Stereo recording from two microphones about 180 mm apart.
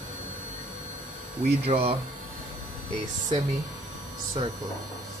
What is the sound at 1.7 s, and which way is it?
Speech, 30° right (ahead or behind).